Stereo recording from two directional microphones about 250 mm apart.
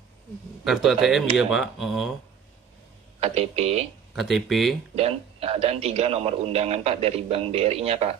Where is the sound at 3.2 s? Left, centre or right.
Right.